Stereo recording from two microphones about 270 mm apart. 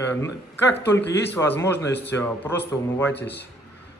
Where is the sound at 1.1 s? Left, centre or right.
Centre.